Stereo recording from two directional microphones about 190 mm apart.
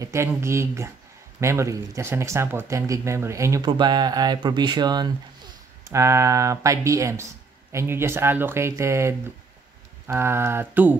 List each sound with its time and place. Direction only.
0.0 s speech: 15° right (ahead or behind)